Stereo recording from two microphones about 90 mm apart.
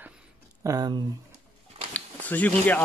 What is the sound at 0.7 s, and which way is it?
Speech, 45° right (ahead or behind).